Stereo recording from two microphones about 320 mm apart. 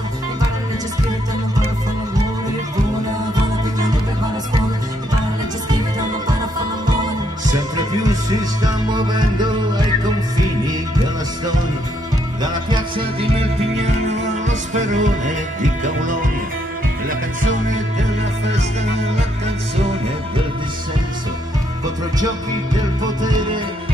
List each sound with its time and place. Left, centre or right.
7.4 s music: centre
12.6 s music: centre
22.8 s music: centre